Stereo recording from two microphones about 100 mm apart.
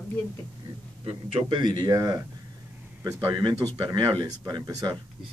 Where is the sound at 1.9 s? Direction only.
35° right (ahead or behind).